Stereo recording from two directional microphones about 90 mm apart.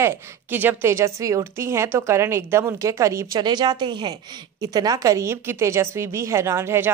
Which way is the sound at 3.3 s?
50° right (ahead or behind).